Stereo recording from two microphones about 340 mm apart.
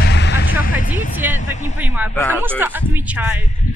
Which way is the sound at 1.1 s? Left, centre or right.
Centre.